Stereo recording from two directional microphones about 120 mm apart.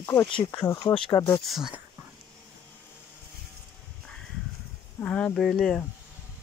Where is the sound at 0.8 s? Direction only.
45° left (ahead or behind).